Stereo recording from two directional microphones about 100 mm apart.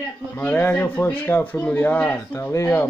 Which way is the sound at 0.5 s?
20° left (ahead or behind).